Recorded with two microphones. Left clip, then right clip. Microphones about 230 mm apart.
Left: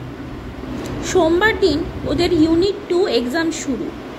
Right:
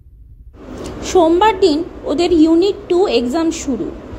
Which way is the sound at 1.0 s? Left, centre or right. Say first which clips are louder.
Right 4 dB; centre.